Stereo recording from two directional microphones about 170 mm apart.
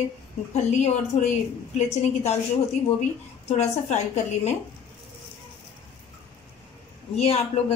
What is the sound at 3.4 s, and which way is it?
Speech, 40° left (ahead or behind).